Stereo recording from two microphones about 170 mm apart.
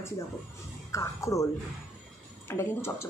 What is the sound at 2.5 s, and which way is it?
Speech, 15° left (ahead or behind).